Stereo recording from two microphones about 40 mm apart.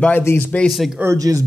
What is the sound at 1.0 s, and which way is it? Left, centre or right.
Speech, right.